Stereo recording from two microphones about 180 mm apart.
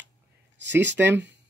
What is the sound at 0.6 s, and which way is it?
Speech, 80° right.